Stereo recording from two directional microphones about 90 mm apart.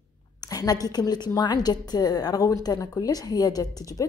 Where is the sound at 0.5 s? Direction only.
45° left (ahead or behind).